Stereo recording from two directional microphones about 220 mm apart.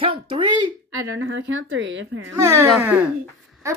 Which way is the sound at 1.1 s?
60° right (ahead or behind).